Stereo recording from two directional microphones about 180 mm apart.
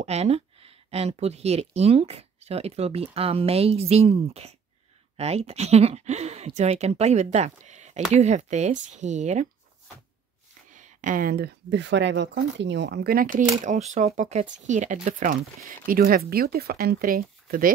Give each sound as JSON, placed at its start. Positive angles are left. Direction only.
{"t": 0.0, "sound": "speech", "side_deg": -35}
{"t": 10.7, "sound": "speech", "side_deg": -45}